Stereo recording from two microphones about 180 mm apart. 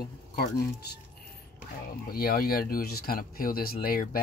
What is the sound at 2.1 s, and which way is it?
Speech, 55° left (ahead or behind).